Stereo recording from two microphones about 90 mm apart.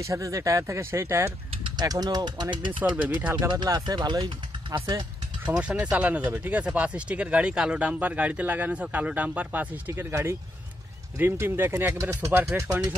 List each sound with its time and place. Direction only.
0.0 s speech: 35° right (ahead or behind)
1.9 s speech: 50° right (ahead or behind)
2.8 s speech: 15° right (ahead or behind)
3.6 s speech: 50° right (ahead or behind)
5.4 s speech: 10° right (ahead or behind)